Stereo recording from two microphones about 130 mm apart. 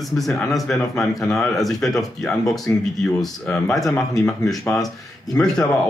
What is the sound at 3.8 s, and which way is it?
Speech, 25° left (ahead or behind).